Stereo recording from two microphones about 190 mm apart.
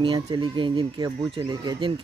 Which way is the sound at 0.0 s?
25° right (ahead or behind).